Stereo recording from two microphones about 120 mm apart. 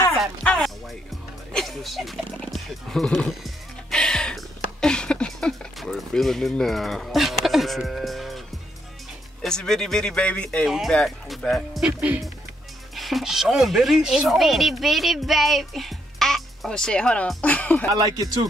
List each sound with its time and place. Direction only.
0.4 s music: 10° left (ahead or behind)
9.4 s speech: 5° left (ahead or behind)
12.9 s speech: centre (ahead or behind)
17.9 s speech: 30° right (ahead or behind)